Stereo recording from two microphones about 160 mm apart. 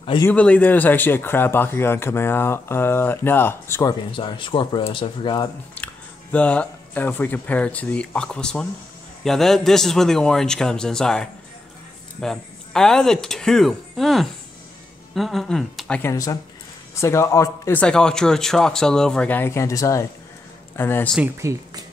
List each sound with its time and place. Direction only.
0.3 s speech: 10° left (ahead or behind)
4.1 s speech: 30° left (ahead or behind)
6.3 s speech: 5° left (ahead or behind)
16.0 s speech: 20° left (ahead or behind)
21.4 s speech: 20° right (ahead or behind)